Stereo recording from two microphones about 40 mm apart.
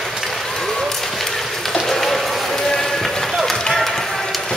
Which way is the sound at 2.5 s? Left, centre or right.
Centre.